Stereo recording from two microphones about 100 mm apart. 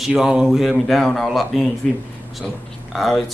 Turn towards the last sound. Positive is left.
turn(degrees=0)  # may be behind; listen again after turning